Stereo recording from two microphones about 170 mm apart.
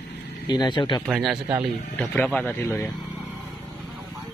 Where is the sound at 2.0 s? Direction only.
10° left (ahead or behind).